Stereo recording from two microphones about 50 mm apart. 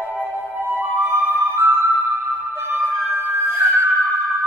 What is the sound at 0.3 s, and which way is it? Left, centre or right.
Music, right.